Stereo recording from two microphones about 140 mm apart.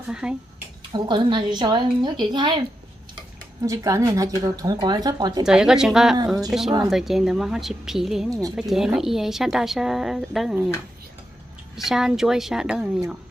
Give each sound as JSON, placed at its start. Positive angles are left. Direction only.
{"t": 0.1, "sound": "speech", "side_deg": -5}
{"t": 0.9, "sound": "a woman's voice", "side_deg": -35}
{"t": 3.6, "sound": "speech", "side_deg": -25}
{"t": 5.4, "sound": "a woman's voice", "side_deg": -5}
{"t": 8.3, "sound": "speech", "side_deg": -25}
{"t": 8.5, "sound": "a woman's voice", "side_deg": -5}
{"t": 11.7, "sound": "a woman's voice", "side_deg": 0}